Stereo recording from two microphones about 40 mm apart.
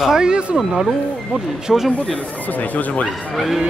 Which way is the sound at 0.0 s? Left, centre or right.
Centre.